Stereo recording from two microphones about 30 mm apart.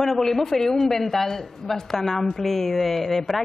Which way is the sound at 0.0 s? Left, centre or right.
Centre.